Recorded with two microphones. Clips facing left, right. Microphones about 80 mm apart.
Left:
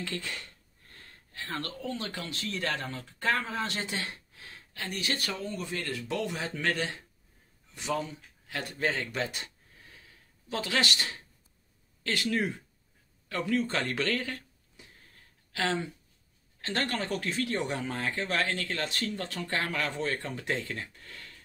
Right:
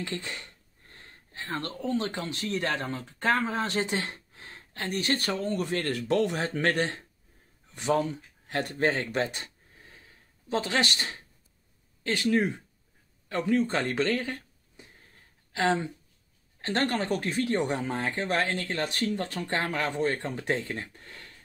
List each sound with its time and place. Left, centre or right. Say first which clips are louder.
0.0 s a sound: right 2 dB; right
1.9 s speech: right 9 dB; right
5.5 s speech: right 6 dB; right
17.8 s speech: right 3 dB; right